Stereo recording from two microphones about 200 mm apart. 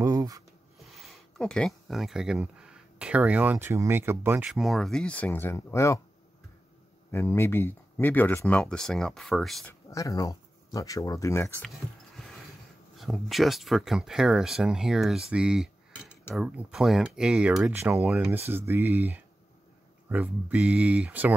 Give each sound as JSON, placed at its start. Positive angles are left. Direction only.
{"t": 0.0, "sound": "a sound", "side_deg": -15}
{"t": 0.9, "sound": "speech", "side_deg": 0}
{"t": 7.1, "sound": "speech", "side_deg": 10}
{"t": 9.8, "sound": "speech", "side_deg": 15}
{"t": 12.9, "sound": "speech", "side_deg": 0}